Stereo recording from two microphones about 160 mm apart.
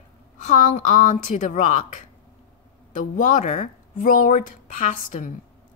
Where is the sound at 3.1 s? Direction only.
50° left (ahead or behind).